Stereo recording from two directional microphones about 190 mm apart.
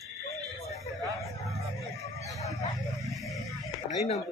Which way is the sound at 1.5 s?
15° left (ahead or behind).